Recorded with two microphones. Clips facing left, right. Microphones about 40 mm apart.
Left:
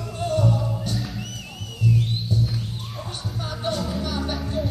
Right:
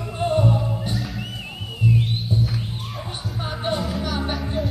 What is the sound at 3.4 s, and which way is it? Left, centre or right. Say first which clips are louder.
Music: right 2 dB; right.